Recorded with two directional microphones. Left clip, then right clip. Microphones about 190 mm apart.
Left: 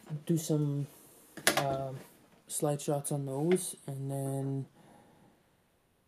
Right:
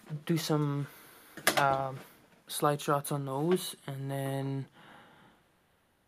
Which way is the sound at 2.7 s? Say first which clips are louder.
Right 3 dB; 10° right (ahead or behind).